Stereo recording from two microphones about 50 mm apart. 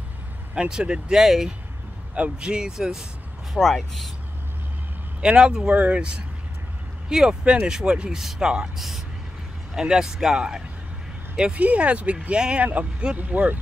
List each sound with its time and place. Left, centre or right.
0.6 s speech: centre
3.5 s speech: centre
5.2 s speech: centre; by 13.6 s right